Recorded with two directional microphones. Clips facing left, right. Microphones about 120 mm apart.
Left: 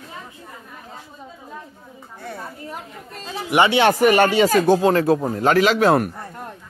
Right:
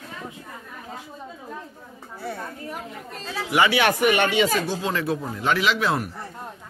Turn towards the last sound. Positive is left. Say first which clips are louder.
# left 7 dB
turn(degrees=50)  # may be behind; listen again after turning